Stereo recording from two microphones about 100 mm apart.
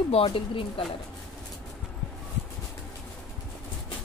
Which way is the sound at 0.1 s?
70° left (ahead or behind).